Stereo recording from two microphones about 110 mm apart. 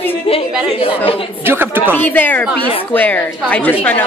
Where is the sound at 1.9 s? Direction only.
15° left (ahead or behind).